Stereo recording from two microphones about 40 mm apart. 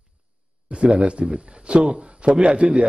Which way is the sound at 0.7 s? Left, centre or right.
Right.